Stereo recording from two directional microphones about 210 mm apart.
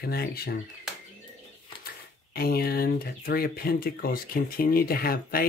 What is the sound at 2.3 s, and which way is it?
Speech, 45° left (ahead or behind).